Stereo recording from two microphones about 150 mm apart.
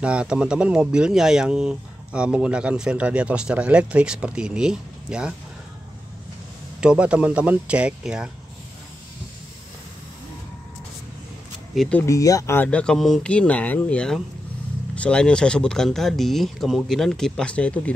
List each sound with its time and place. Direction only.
0.0 s speech: 5° right (ahead or behind)
6.8 s speech: 5° right (ahead or behind)
11.7 s speech: centre (ahead or behind)
12.1 s speech: 25° left (ahead or behind)
12.6 s speech: 5° left (ahead or behind)